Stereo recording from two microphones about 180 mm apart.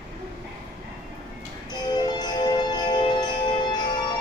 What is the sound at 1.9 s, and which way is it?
Music, 20° left (ahead or behind).